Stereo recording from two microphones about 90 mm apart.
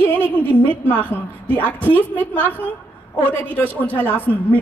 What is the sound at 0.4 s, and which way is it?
A woman's voice, 20° left (ahead or behind).